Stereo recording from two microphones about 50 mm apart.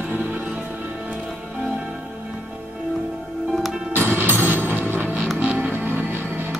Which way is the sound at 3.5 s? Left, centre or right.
Centre.